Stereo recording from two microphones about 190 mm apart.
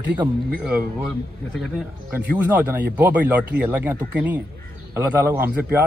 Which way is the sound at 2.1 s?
10° right (ahead or behind).